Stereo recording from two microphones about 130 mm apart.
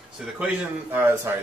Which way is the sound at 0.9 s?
15° right (ahead or behind).